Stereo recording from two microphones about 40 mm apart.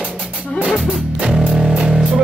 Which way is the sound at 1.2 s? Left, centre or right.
Right.